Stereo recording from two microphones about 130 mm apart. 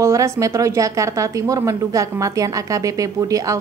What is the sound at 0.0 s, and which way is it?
A woman's voice, 25° right (ahead or behind).